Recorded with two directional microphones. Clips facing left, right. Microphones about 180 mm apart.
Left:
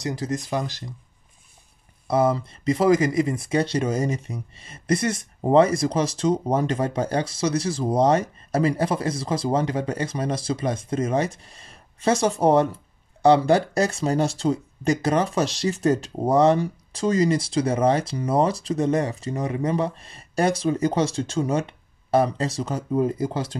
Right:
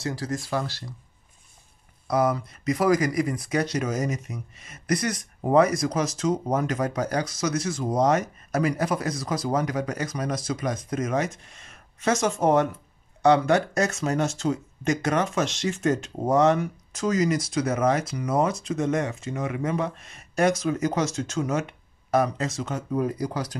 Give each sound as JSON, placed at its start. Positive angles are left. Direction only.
{"t": 0.0, "sound": "speech", "side_deg": 20}
{"t": 2.0, "sound": "speech", "side_deg": 25}